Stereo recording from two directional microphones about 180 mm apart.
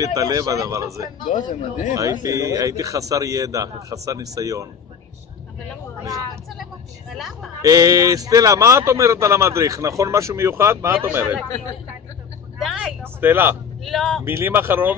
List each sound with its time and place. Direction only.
0.0 s a man's voice: 20° right (ahead or behind)
1.5 s speech: 45° left (ahead or behind)
2.0 s a man's voice: 20° right (ahead or behind)
6.5 s vehicle: centre (ahead or behind)
7.6 s a man's voice: 20° right (ahead or behind)
12.5 s vehicle: centre (ahead or behind)
13.2 s a man's voice: 10° right (ahead or behind)
13.8 s speech: centre (ahead or behind)
14.2 s a man's voice: 10° right (ahead or behind)